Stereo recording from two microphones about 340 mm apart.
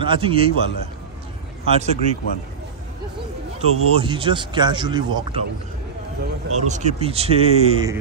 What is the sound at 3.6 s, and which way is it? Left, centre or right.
Speech, centre.